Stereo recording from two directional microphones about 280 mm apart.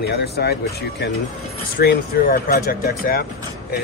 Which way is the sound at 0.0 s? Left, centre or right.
Left.